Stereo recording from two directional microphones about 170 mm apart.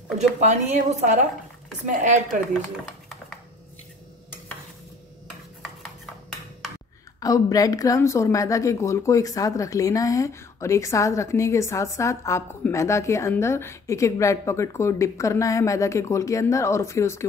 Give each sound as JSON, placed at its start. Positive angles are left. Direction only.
{"t": 0.4, "sound": "a woman's voice", "side_deg": -45}
{"t": 7.2, "sound": "a woman's voice", "side_deg": 20}